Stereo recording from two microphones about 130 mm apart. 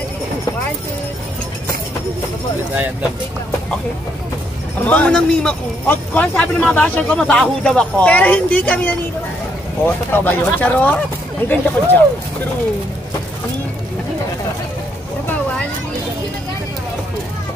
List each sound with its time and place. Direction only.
4.8 s a man's voice: 10° left (ahead or behind)